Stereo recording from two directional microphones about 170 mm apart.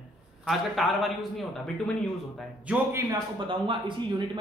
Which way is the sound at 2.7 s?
15° right (ahead or behind).